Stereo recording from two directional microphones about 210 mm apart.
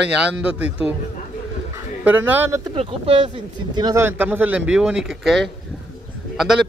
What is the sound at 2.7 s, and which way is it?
Speech, 25° right (ahead or behind).